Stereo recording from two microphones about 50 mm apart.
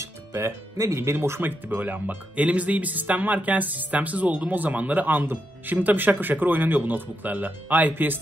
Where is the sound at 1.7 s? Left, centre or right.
Right.